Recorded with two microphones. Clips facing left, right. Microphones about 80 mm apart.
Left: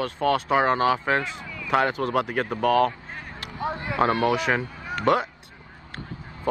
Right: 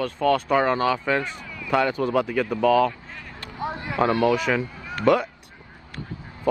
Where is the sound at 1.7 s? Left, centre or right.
Left.